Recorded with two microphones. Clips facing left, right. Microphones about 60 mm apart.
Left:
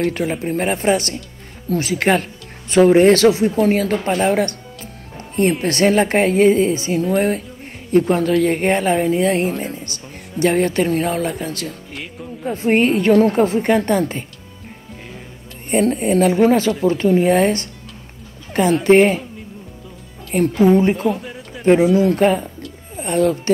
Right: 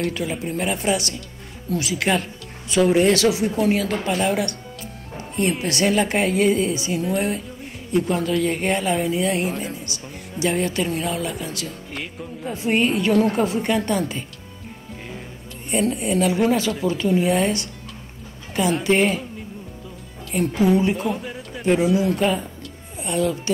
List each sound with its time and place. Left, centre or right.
0.1 s a woman's voice: left
11.9 s music: centre
12.5 s a woman's voice: left
15.7 s a woman's voice: left
20.6 s a woman's voice: left
21.1 s a sound: centre
21.9 s a woman's voice: left